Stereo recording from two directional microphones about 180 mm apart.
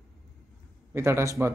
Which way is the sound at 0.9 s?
15° right (ahead or behind).